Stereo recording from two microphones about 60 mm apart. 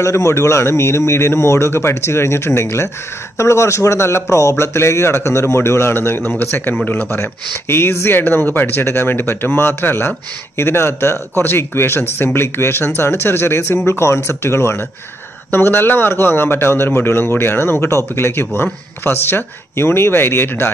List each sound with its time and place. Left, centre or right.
0.0 s a man's voice: left
7.1 s a man's voice: left